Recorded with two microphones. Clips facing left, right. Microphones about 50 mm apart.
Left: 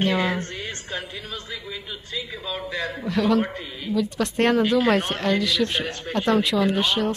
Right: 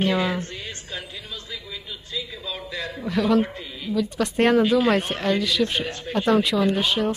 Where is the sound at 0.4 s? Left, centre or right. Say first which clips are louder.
Left 2 dB; left.